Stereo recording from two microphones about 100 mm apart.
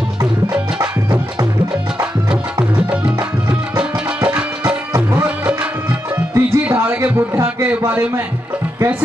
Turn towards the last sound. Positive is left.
turn(degrees=-20)  # may be behind; listen again after turning